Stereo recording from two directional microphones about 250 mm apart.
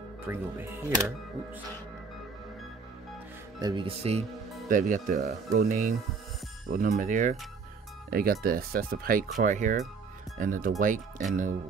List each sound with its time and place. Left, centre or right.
0.3 s speech: centre
3.5 s speech: centre